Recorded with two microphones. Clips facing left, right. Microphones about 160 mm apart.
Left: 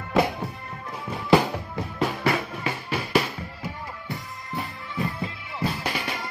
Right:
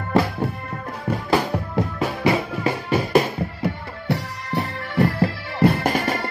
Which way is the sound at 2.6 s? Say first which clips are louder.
Right 8 dB; 45° right (ahead or behind).